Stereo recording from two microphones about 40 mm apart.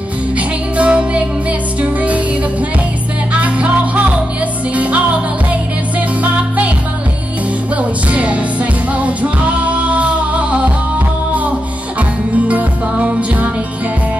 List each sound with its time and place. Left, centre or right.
0.4 s music: right
3.3 s music: right
7.7 s music: right
12.4 s music: right